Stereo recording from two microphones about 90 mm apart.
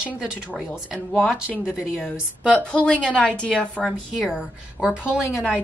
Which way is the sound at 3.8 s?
5° right (ahead or behind).